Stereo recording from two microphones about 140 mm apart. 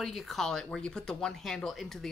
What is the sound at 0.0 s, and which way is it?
Speech, centre (ahead or behind).